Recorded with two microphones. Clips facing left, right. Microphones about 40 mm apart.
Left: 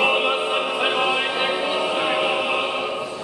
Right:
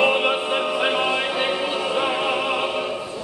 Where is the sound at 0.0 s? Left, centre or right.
Centre.